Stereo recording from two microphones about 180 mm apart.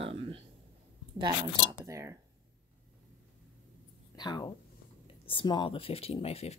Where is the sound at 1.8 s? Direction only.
15° right (ahead or behind).